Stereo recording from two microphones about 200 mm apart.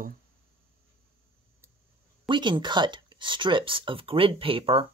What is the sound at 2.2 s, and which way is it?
Speech, 25° right (ahead or behind).